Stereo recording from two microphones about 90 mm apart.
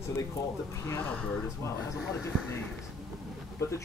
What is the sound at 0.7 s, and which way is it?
Speech, 25° left (ahead or behind).